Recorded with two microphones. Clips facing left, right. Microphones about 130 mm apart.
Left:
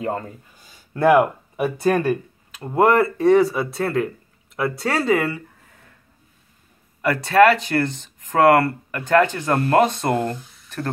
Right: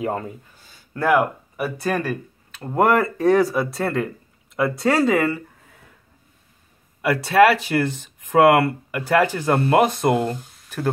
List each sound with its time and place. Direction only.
0.0 s speech: 5° right (ahead or behind)
0.7 s speech: 20° left (ahead or behind)
2.6 s speech: 5° left (ahead or behind)
7.0 s speech: 5° right (ahead or behind)